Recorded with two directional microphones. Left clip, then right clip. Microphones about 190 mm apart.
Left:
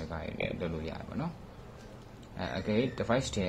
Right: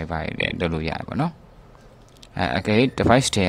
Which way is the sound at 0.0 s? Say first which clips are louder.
Right 11 dB; 40° right (ahead or behind).